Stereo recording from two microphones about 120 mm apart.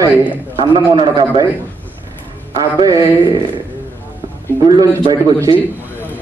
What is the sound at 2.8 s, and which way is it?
Speech, 30° right (ahead or behind).